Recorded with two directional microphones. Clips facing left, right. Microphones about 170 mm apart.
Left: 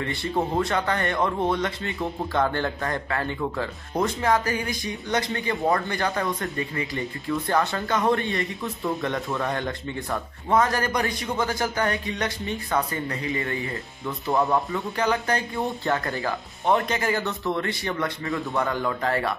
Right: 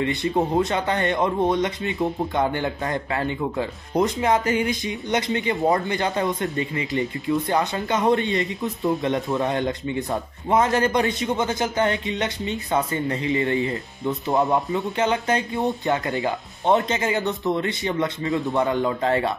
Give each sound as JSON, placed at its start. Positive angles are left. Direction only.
{"t": 0.0, "sound": "speech", "side_deg": -20}